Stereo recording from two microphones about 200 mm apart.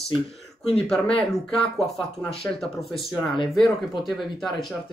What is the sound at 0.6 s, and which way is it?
Speech, centre (ahead or behind).